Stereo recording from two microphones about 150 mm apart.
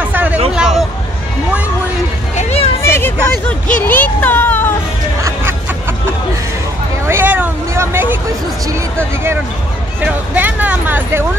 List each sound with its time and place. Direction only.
0.0 s hubbub: 10° right (ahead or behind)
2.3 s a sound: 45° left (ahead or behind)
2.8 s vehicle: 15° left (ahead or behind)
3.3 s speech: 10° left (ahead or behind)
5.2 s music: 15° right (ahead or behind)
7.1 s vehicle: 15° right (ahead or behind)
8.6 s speech: 20° right (ahead or behind)